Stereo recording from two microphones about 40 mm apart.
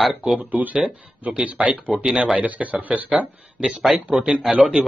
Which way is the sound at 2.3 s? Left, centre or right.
Right.